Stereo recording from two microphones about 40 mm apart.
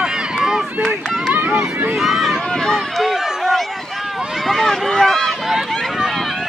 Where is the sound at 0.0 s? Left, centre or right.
Centre.